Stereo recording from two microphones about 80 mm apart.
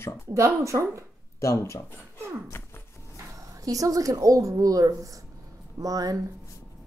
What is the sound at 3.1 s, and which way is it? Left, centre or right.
Speech, right.